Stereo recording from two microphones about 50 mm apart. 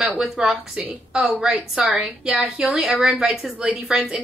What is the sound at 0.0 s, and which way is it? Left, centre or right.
Speech, centre.